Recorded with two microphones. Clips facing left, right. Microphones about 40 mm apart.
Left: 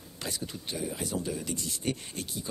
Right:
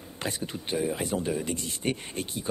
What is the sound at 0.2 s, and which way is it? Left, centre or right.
Speech, right.